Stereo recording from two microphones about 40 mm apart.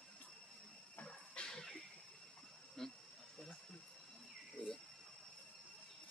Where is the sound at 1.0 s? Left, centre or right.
Left.